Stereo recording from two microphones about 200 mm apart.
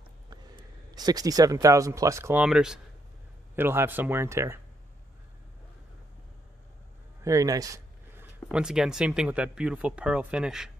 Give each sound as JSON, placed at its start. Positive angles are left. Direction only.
{"t": 0.9, "sound": "speech", "side_deg": -20}
{"t": 7.2, "sound": "a sound", "side_deg": -15}
{"t": 8.5, "sound": "speech", "side_deg": -5}